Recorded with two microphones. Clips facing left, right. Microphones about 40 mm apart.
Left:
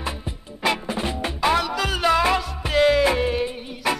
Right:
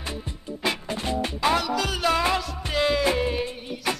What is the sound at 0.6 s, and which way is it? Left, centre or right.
Music, centre.